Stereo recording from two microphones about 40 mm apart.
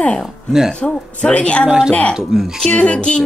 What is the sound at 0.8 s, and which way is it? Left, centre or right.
Speech, left.